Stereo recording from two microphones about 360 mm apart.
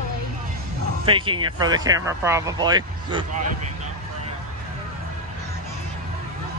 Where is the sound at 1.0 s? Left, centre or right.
Centre.